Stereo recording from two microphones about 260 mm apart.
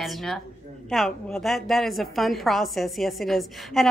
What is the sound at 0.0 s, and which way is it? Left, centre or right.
A woman's voice, centre.